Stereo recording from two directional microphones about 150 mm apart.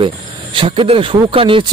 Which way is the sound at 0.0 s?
35° right (ahead or behind).